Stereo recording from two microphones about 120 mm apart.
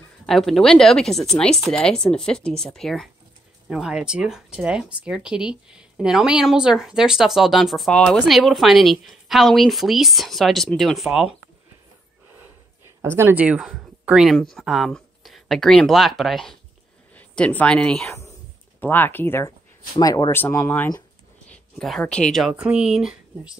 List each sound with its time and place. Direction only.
0.3 s speech: 5° left (ahead or behind)
3.6 s speech: 5° right (ahead or behind)
13.0 s speech: 20° right (ahead or behind); by 16.5 s centre (ahead or behind)
17.1 s speech: 15° left (ahead or behind)
20.0 s speech: 30° left (ahead or behind)
20.3 s speech: 20° left (ahead or behind)
21.5 s speech: 5° left (ahead or behind)
22.4 s speech: 10° right (ahead or behind)